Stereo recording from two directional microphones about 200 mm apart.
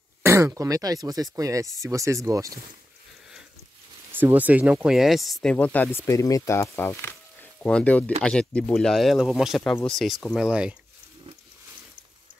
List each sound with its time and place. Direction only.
0.2 s speech: 15° right (ahead or behind)
4.1 s speech: 10° right (ahead or behind)